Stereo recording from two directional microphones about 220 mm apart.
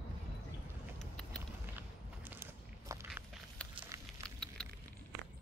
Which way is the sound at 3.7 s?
25° right (ahead or behind).